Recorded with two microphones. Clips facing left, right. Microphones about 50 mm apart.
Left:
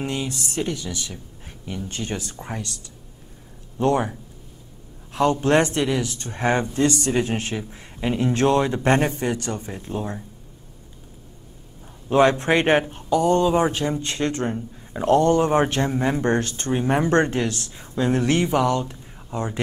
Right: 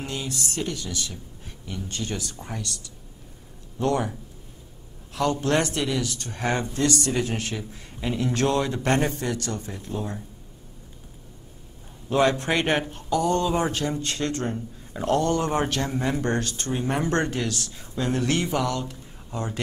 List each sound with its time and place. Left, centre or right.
0.0 s speech: left
5.1 s speech: left
12.1 s speech: left